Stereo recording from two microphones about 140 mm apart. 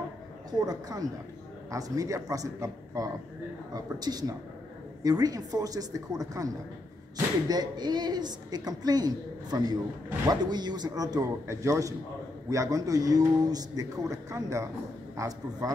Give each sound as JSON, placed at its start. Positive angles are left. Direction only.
{"t": 0.6, "sound": "a woman's voice", "side_deg": -25}